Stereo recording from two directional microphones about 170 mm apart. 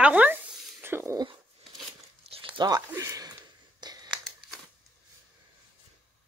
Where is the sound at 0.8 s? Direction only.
15° right (ahead or behind).